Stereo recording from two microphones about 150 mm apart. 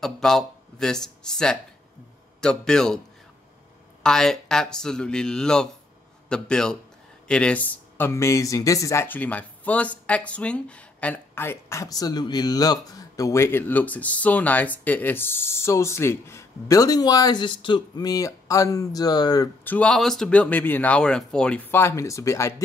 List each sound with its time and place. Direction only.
0.0 s speech: 5° left (ahead or behind)
4.0 s speech: 5° left (ahead or behind); by 19.5 s 25° left (ahead or behind)
19.6 s speech: 10° left (ahead or behind)